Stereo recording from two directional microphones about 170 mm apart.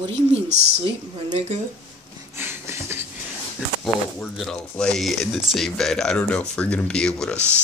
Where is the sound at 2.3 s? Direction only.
15° right (ahead or behind).